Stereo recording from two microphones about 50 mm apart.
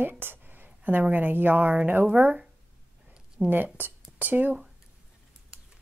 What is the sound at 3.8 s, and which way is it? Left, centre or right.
Speech, right.